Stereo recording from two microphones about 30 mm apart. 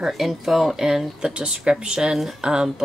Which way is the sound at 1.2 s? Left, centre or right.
Right.